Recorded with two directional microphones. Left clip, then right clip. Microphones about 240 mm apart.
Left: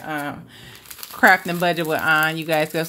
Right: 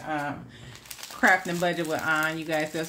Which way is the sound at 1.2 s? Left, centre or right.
Left.